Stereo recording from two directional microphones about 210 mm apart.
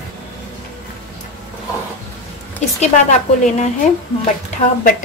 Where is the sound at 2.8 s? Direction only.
35° left (ahead or behind).